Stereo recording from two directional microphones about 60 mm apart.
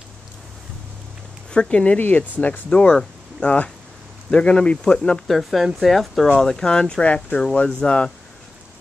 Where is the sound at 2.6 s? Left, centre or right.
Centre.